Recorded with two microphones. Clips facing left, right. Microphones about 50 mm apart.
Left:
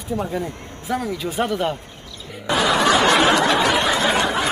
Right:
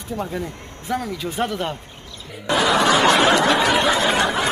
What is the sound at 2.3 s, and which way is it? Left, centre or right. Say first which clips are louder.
Snicker: right 1 dB; centre.